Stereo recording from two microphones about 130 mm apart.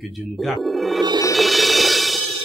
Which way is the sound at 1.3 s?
Centre (ahead or behind).